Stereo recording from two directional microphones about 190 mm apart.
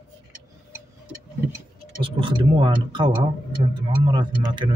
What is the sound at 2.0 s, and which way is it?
Speech, 25° right (ahead or behind).